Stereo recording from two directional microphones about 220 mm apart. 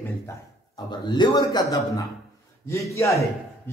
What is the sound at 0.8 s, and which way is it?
A man's voice, 20° left (ahead or behind).